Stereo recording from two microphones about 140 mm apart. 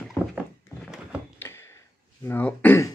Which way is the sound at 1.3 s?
15° left (ahead or behind).